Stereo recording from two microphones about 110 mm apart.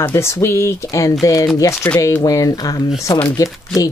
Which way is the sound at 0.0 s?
25° left (ahead or behind).